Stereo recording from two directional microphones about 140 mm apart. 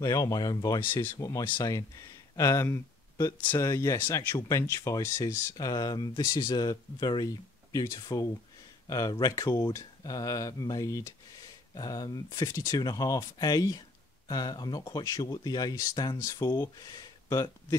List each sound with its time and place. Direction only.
0.0 s speech: 25° left (ahead or behind)